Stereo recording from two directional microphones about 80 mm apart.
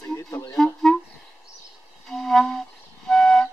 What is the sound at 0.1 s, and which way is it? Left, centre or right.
Music, left.